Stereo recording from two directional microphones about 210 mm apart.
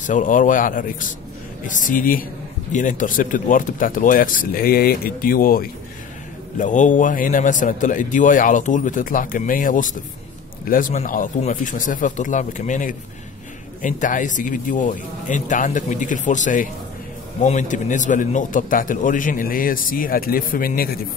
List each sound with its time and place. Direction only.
0.0 s a man's voice: 40° left (ahead or behind)